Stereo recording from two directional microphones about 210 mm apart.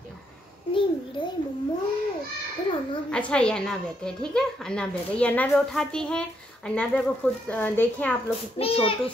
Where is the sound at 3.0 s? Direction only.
5° left (ahead or behind).